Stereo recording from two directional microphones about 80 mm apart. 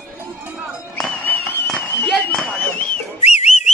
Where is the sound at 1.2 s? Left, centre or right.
Left.